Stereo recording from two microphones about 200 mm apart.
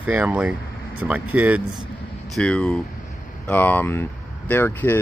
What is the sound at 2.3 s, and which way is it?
Speech, 5° left (ahead or behind).